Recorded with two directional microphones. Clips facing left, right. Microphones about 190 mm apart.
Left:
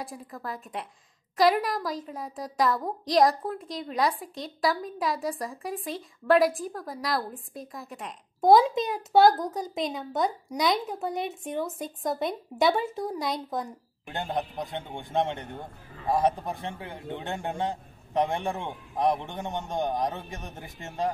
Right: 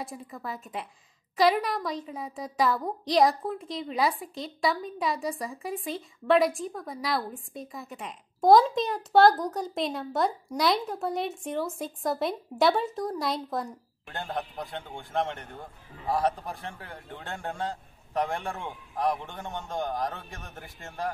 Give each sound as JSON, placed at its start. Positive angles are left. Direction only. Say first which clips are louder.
{"t": 0.0, "sound": "a woman's voice", "louder": "even", "side_deg": 0}
{"t": 14.0, "sound": "a man's voice", "louder": "left 3 dB", "side_deg": 20}